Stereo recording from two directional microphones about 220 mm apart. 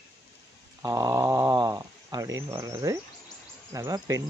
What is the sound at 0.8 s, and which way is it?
Speech, 15° right (ahead or behind).